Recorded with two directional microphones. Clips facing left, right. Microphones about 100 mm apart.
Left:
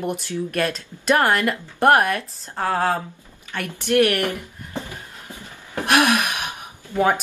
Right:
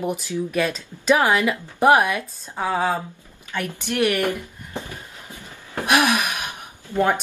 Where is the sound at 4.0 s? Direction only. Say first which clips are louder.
Left 1 dB; 15° right (ahead or behind).